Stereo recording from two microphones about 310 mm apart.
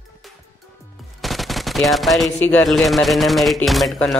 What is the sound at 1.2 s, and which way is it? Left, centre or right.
Speech, centre.